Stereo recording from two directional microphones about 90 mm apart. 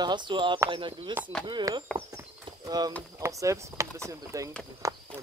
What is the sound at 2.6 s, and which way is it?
Speech, 45° right (ahead or behind).